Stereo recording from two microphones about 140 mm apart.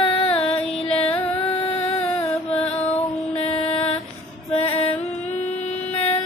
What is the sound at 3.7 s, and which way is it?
Music, 50° left (ahead or behind).